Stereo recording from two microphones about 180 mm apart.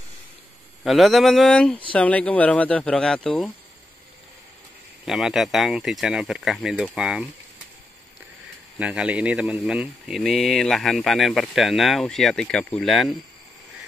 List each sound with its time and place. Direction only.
0.8 s speech: centre (ahead or behind)
5.0 s speech: 5° right (ahead or behind)
8.7 s speech: 5° right (ahead or behind)